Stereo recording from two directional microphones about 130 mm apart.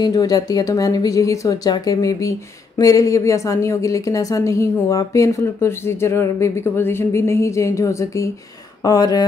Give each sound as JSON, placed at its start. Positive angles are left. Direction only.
{"t": 0.0, "sound": "speech", "side_deg": 30}